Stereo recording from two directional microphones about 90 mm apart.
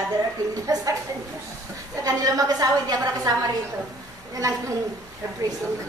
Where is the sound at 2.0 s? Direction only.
40° right (ahead or behind).